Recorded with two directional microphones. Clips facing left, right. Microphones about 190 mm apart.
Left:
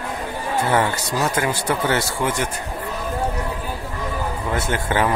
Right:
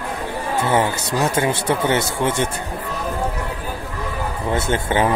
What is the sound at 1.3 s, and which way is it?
Speech, 25° right (ahead or behind).